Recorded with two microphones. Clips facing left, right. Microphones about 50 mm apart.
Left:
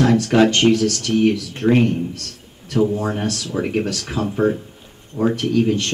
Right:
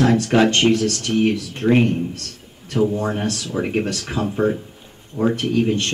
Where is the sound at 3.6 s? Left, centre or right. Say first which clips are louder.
Even; centre.